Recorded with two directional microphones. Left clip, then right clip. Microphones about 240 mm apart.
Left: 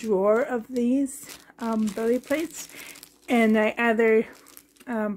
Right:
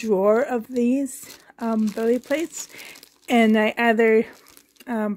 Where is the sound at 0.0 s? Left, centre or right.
Right.